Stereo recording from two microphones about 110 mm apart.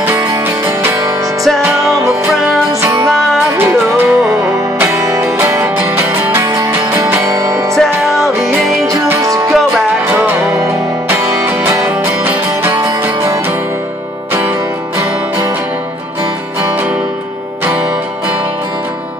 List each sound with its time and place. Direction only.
0.0 s music: 25° right (ahead or behind)
3.5 s music: 20° right (ahead or behind)
7.7 s music: centre (ahead or behind)
8.5 s music: 20° right (ahead or behind)